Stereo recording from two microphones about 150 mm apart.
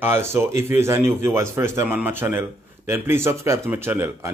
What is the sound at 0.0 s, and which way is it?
Speech, 15° right (ahead or behind).